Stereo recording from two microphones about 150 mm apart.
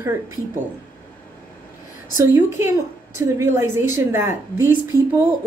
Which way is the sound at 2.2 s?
15° right (ahead or behind).